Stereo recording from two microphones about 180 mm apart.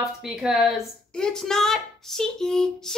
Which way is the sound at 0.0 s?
Centre (ahead or behind).